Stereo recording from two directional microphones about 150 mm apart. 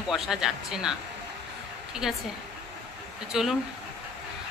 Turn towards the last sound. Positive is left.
turn(degrees=-5)  # may be behind; listen again after turning